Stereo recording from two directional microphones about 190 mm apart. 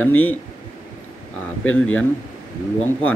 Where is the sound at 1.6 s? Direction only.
90° left.